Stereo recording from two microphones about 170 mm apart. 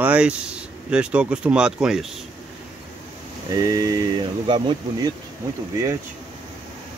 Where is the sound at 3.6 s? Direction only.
20° right (ahead or behind).